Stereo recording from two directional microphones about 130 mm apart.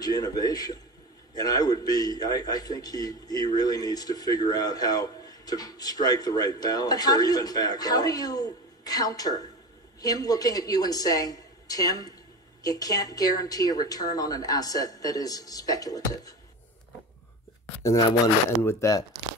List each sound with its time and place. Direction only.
0.0 s a man's voice: 30° left (ahead or behind)
18.2 s a man's voice: 20° left (ahead or behind)